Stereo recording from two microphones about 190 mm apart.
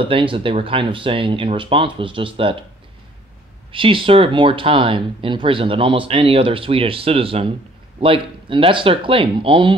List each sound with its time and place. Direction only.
0.0 s speech: 25° right (ahead or behind)
3.7 s speech: 25° right (ahead or behind)